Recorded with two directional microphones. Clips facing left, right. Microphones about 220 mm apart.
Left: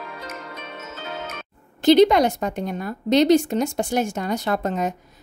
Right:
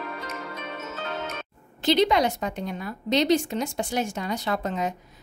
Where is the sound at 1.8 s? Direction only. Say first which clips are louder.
Left 7 dB; 45° left (ahead or behind).